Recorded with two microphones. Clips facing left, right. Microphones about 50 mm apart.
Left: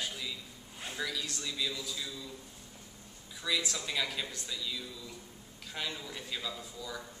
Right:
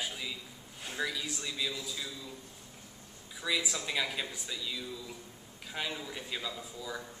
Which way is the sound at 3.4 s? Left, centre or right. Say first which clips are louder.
Right 1 dB; centre.